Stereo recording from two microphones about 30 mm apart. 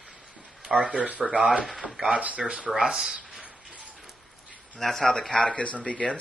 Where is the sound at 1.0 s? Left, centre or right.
Right.